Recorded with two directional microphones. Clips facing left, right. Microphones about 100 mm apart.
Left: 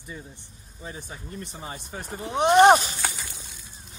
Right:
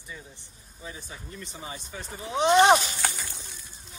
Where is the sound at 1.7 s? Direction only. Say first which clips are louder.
Left 3 dB; 50° left (ahead or behind).